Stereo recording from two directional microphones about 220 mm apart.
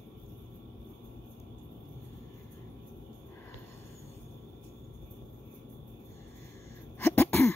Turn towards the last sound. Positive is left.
turn(degrees=10)  # may be behind; listen again after turning